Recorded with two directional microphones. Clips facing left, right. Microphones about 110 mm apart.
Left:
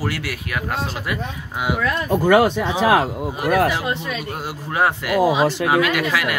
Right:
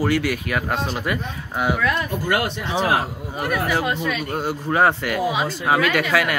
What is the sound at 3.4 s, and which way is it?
Speech, 90° left.